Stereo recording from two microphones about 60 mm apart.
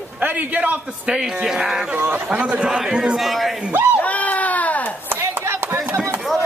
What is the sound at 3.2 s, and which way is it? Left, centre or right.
Speech, centre.